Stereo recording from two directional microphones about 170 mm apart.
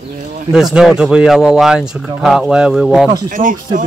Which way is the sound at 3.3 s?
55° right (ahead or behind).